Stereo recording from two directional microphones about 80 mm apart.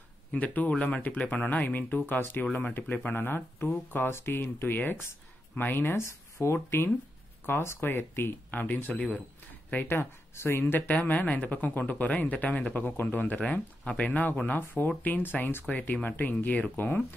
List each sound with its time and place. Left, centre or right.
0.3 s speech: centre